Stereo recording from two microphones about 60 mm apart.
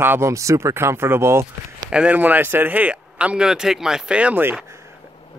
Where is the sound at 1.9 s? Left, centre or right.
Centre.